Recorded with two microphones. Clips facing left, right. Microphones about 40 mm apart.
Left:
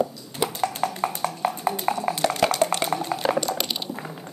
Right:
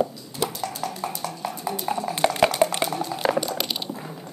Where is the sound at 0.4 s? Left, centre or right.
Centre.